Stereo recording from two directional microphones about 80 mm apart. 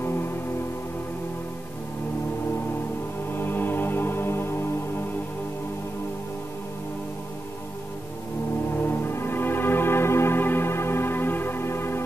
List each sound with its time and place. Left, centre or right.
3.3 s music: left
8.7 s music: left